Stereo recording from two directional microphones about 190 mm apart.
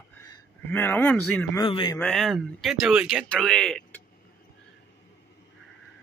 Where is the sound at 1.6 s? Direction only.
25° left (ahead or behind).